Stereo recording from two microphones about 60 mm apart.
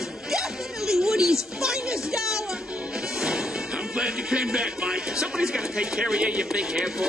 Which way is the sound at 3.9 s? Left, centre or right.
Centre.